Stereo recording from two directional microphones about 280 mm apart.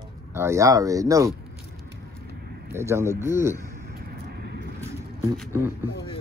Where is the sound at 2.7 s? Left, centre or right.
Centre.